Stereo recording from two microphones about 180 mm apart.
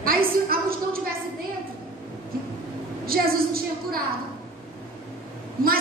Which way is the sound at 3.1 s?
55° right (ahead or behind).